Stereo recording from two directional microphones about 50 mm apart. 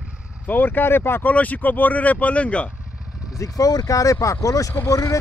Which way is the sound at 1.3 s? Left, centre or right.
Left.